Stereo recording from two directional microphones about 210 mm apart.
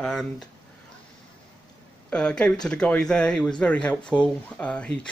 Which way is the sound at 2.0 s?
5° left (ahead or behind).